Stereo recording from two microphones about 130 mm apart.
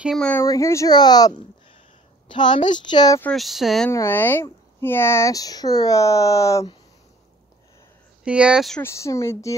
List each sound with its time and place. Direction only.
0.4 s a woman's voice: 20° left (ahead or behind)
3.3 s speech: centre (ahead or behind)
3.9 s speech: 20° left (ahead or behind)
8.3 s speech: 10° right (ahead or behind)
8.8 s speech: 25° left (ahead or behind)